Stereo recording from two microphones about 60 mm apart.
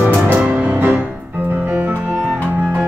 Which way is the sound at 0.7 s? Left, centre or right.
Right.